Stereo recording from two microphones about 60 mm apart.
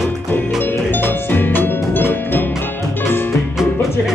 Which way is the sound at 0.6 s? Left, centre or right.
Left.